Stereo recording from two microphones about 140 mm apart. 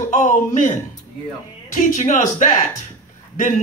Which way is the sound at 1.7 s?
65° left (ahead or behind).